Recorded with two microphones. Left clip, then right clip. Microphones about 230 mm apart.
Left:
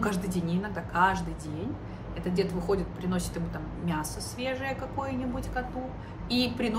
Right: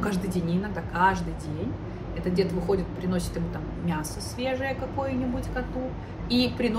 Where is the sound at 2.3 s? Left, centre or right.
Centre.